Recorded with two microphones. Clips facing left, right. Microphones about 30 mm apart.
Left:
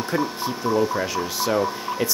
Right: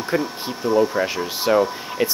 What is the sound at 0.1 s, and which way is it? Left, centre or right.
Speech, centre.